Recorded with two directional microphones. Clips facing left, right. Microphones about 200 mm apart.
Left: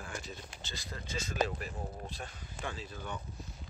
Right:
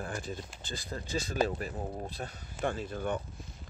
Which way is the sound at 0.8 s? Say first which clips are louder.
Right 5 dB; 35° right (ahead or behind).